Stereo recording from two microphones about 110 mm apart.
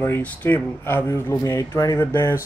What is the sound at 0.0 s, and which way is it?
Speech, 20° left (ahead or behind).